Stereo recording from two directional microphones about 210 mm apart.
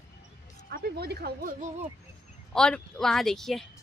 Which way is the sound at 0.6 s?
50° right (ahead or behind).